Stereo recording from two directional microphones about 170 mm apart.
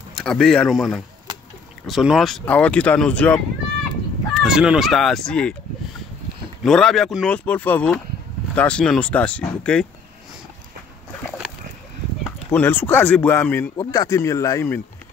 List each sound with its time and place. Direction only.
0.1 s speech: 5° left (ahead or behind)
6.6 s speech: centre (ahead or behind)
12.4 s speech: 10° left (ahead or behind)